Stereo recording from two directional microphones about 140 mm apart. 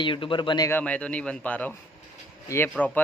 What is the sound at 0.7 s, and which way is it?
A man's voice, 10° left (ahead or behind).